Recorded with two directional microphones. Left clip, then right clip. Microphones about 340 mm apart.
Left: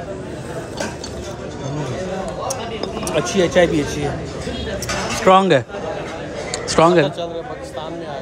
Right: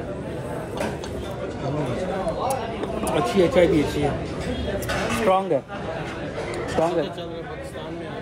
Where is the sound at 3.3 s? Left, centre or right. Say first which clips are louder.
Left 3 dB; centre.